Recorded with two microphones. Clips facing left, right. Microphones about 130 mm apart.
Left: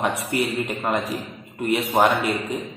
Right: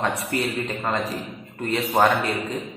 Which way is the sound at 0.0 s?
20° left (ahead or behind).